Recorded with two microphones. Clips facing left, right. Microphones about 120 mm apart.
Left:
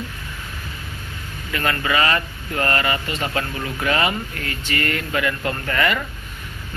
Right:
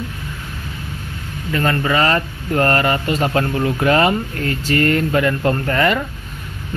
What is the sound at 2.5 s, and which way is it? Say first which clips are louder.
Speech: right 6 dB; 45° right (ahead or behind).